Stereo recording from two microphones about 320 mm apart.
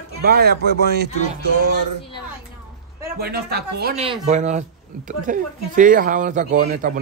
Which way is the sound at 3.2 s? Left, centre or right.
Right.